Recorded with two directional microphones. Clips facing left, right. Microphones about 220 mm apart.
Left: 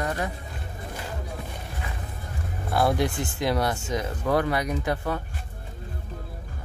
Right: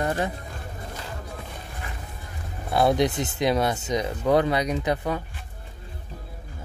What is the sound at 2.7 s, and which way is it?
Speech, 20° right (ahead or behind).